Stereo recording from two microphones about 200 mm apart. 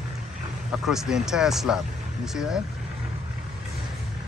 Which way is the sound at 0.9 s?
Centre (ahead or behind).